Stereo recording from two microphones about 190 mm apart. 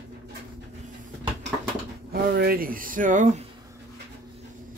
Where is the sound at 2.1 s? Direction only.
50° right (ahead or behind).